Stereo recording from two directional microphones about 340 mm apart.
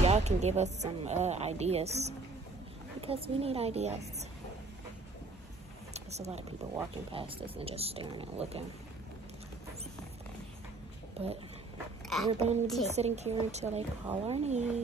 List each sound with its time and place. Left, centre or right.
0.0 s speech: centre
5.9 s speech: centre
11.2 s dog: centre
12.3 s speech: centre